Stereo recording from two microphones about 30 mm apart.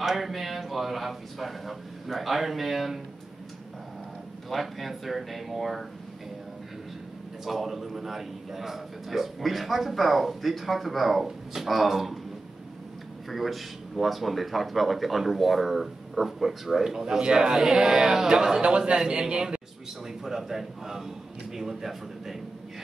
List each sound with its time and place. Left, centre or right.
0.0 s a man's voice: centre
4.5 s a man's voice: centre
7.4 s a man's voice: centre
13.3 s a man's voice: centre
17.2 s a man's voice: right
18.9 s a man's voice: right
20.2 s a man's voice: centre